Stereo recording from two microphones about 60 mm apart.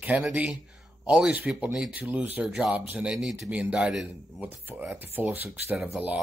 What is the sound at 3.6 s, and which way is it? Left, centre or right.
Speech, centre.